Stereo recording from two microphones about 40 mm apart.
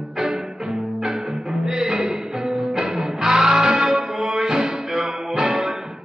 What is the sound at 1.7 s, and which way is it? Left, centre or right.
Music, centre.